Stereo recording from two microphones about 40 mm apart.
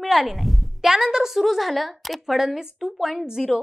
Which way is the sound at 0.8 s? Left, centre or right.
Centre.